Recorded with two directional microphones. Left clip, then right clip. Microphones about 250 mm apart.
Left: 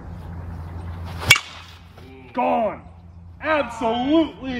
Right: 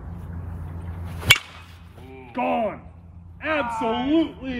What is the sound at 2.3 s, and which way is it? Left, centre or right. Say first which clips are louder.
A man's voice: left 3 dB; centre.